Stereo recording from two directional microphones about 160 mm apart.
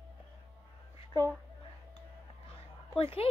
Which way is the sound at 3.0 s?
35° left (ahead or behind).